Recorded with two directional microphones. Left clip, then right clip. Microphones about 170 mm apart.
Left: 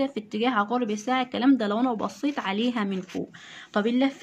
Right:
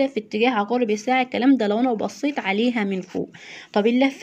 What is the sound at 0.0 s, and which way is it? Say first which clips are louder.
A woman's voice: right 6 dB; 15° right (ahead or behind).